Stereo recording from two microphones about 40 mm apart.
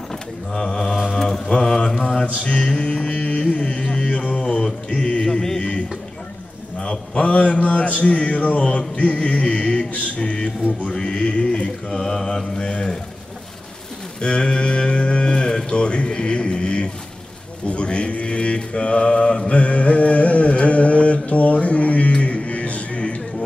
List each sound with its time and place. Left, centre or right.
0.1 s mantra: centre
2.4 s mantra: left
3.4 s a sound: left
4.9 s mantra: left
5.6 s a sound: left
7.2 s speech: left
11.0 s mantra: left
14.2 s livestock: left
17.6 s mantra: left